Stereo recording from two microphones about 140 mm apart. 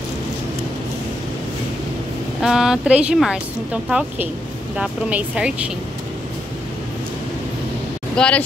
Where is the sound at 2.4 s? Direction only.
5° right (ahead or behind).